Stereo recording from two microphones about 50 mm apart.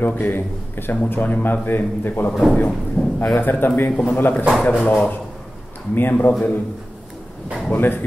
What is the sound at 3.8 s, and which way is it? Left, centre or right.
A man's voice, left.